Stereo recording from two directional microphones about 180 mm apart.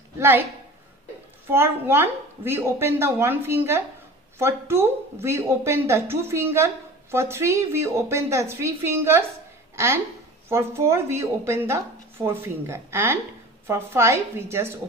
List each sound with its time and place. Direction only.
0.2 s speech: 10° right (ahead or behind)
1.5 s speech: 15° right (ahead or behind)